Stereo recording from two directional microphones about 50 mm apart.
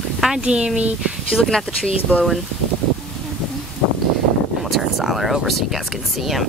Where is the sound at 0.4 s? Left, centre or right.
Right.